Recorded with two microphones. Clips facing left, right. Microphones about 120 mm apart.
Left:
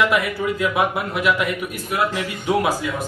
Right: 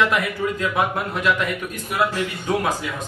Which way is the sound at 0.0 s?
15° left (ahead or behind).